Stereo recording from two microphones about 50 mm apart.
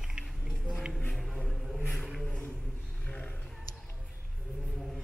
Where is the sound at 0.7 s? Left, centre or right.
Centre.